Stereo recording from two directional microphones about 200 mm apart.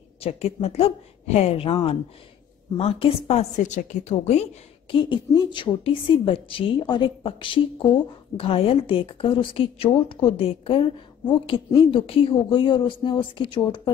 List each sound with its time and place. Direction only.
0.2 s a woman's voice: 30° left (ahead or behind)
4.9 s a woman's voice: 25° left (ahead or behind)